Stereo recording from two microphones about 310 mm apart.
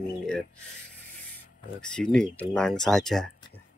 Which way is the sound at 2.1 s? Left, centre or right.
Centre.